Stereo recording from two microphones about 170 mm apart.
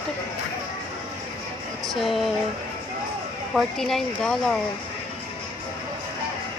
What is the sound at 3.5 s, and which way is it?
Speech, centre (ahead or behind).